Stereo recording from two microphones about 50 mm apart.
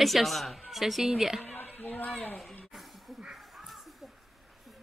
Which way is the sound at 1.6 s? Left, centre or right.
Left.